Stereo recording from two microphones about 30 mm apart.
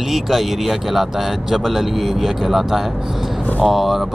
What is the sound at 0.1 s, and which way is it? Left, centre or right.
Speech, centre.